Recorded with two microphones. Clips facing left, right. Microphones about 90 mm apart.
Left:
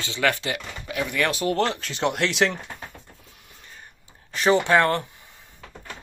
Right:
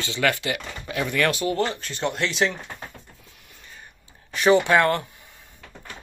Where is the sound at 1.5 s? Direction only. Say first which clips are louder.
Left 1 dB; 85° left.